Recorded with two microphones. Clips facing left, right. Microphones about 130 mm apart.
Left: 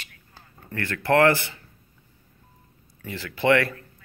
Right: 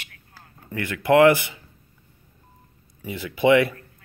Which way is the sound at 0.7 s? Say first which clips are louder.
Right 3 dB; 15° right (ahead or behind).